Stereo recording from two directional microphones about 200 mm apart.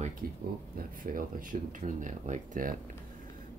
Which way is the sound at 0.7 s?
45° right (ahead or behind).